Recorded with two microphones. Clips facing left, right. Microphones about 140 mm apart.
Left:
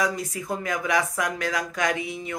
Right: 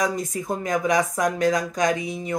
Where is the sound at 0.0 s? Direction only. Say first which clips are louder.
Right 2 dB; 45° right (ahead or behind).